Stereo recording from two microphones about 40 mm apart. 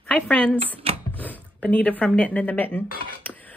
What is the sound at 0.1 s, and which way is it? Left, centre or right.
Speech, left.